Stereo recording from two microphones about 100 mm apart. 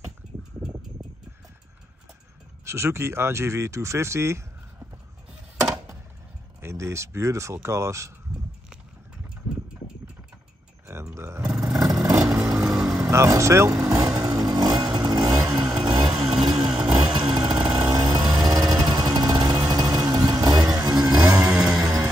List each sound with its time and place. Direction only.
2.6 s speech: 25° right (ahead or behind)
6.6 s speech: 30° right (ahead or behind)
11.1 s music: 25° right (ahead or behind)
11.4 s vehicle: 10° right (ahead or behind)
13.1 s vehicle: 30° right (ahead or behind)
16.7 s vehicle: 10° right (ahead or behind)
17.1 s chainsaw: 45° right (ahead or behind)
18.5 s music: 40° right (ahead or behind)
19.7 s vehicle: 40° right (ahead or behind)
21.5 s music: 10° right (ahead or behind)
21.7 s music: 30° right (ahead or behind)